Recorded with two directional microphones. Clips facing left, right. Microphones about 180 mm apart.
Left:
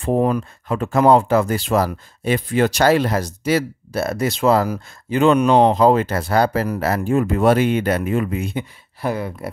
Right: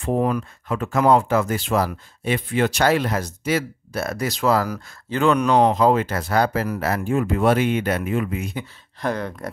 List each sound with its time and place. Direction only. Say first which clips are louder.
0.0 s speech: left 3 dB; 35° left (ahead or behind)
9.0 s speech: left 2 dB; 5° left (ahead or behind)